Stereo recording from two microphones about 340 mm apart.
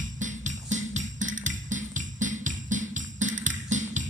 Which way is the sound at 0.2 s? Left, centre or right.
Right.